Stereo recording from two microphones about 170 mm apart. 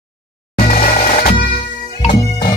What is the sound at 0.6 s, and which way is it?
Music, 60° left (ahead or behind).